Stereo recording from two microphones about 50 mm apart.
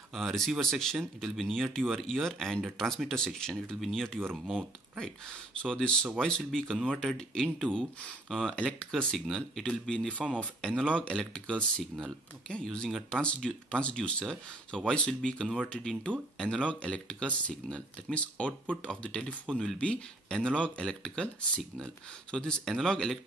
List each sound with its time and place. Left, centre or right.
0.1 s speech: centre
0.6 s speech: centre
19.4 s speech: centre
19.8 s speech: left